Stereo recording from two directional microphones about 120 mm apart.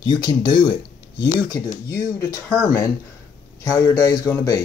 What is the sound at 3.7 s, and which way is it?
Speech, 30° left (ahead or behind).